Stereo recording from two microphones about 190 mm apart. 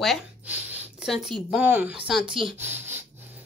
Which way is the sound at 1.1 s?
Centre (ahead or behind).